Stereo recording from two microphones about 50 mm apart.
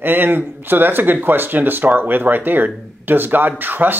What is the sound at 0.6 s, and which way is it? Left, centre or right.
Speech, right.